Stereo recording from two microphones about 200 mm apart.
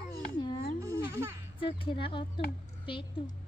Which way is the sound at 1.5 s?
25° left (ahead or behind).